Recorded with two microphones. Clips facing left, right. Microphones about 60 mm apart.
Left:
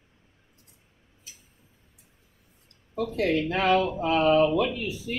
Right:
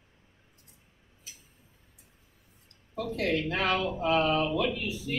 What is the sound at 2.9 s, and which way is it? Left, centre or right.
Speech, centre.